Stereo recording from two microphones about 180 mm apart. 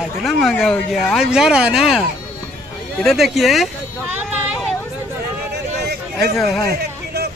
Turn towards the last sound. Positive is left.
turn(degrees=20)  # may be behind; listen again after turning